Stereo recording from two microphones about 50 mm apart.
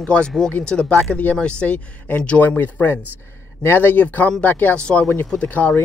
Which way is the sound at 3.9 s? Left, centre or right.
Left.